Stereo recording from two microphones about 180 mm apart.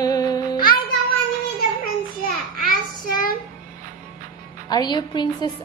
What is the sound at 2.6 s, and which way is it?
Child singing, 50° left (ahead or behind).